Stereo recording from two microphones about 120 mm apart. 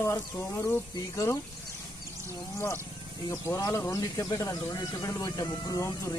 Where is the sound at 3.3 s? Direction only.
30° left (ahead or behind).